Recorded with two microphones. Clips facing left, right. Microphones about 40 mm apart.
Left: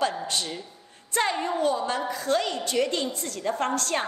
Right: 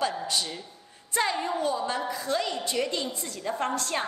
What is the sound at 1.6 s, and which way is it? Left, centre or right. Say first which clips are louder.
A woman's voice: left 3 dB; left.